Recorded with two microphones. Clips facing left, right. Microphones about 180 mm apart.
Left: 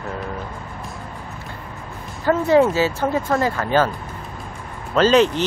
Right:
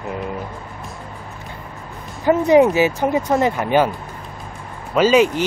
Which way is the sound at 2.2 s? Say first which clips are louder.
Right 3 dB; 15° right (ahead or behind).